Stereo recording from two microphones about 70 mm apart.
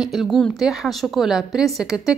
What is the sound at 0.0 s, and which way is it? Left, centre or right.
A woman's voice, centre.